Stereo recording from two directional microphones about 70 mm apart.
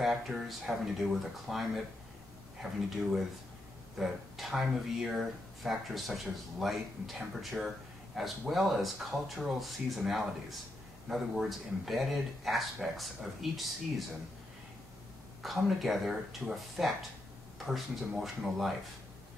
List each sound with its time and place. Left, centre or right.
0.0 s speech: centre
15.4 s speech: centre